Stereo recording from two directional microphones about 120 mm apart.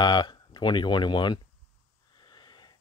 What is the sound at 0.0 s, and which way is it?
Speech, 40° left (ahead or behind).